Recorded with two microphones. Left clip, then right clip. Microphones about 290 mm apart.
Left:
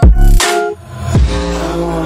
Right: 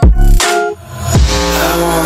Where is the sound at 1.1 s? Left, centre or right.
Centre; by 2.0 s right.